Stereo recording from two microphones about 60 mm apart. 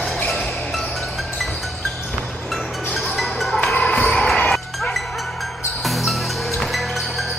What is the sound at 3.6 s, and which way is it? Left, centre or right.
Music, centre.